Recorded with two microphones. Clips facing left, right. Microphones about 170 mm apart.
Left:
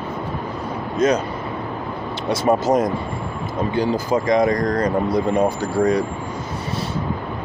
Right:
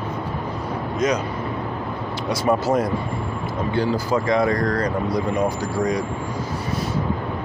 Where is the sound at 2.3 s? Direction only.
25° left (ahead or behind).